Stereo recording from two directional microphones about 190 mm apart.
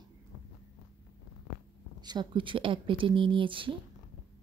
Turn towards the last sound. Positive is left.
turn(degrees=-25)  # may be behind; listen again after turning